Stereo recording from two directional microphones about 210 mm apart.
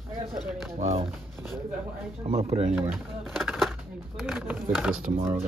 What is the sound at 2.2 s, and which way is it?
Speech, 30° right (ahead or behind).